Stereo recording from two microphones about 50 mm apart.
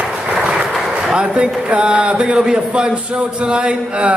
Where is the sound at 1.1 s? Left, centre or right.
Centre.